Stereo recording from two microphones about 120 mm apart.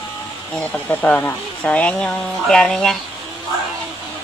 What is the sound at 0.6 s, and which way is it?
Speech, 10° left (ahead or behind).